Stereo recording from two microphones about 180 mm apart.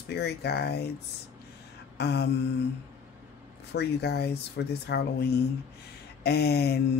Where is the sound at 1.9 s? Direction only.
65° left (ahead or behind).